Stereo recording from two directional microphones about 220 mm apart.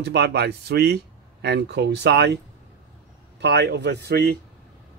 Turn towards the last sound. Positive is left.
turn(degrees=-50)  # may be behind; listen again after turning